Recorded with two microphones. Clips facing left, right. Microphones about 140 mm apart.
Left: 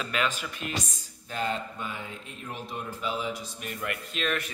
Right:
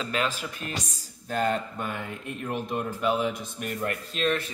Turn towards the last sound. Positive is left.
turn(degrees=-35)  # may be behind; listen again after turning